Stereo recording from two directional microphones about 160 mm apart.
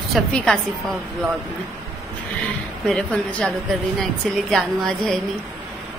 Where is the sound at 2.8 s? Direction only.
5° left (ahead or behind).